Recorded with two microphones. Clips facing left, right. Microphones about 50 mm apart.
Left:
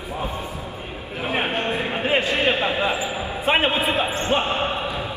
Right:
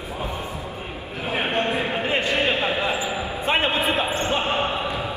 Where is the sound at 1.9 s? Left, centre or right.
Centre.